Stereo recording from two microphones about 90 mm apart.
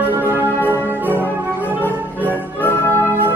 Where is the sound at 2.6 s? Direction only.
20° left (ahead or behind).